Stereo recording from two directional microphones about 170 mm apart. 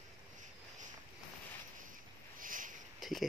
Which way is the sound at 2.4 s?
50° right (ahead or behind).